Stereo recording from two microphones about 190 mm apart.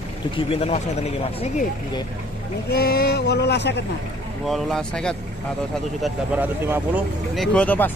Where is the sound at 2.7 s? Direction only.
55° left (ahead or behind).